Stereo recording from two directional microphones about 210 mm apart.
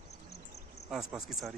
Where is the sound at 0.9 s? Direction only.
Centre (ahead or behind).